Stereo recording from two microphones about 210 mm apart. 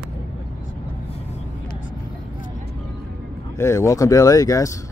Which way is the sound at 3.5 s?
15° left (ahead or behind).